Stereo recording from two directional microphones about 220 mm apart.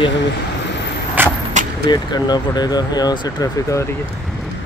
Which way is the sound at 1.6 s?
35° right (ahead or behind).